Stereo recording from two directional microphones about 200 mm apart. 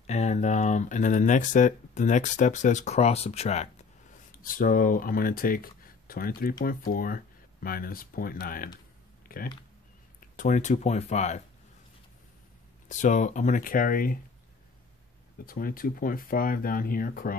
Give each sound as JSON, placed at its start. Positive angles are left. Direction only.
{"t": 0.0, "sound": "speech", "side_deg": 35}
{"t": 4.4, "sound": "speech", "side_deg": 45}
{"t": 12.8, "sound": "speech", "side_deg": 40}
{"t": 15.4, "sound": "speech", "side_deg": 45}